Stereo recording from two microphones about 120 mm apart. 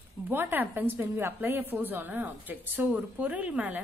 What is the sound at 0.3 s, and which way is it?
A woman's voice, 15° right (ahead or behind).